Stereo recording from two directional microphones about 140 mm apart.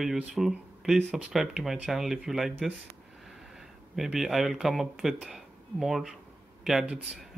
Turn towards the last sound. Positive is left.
turn(degrees=-5)  # may be behind; listen again after turning